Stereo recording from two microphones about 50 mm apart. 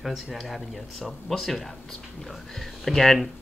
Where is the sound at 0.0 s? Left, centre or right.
Centre.